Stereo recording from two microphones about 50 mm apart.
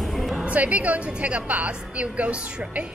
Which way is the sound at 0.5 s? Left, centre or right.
Right.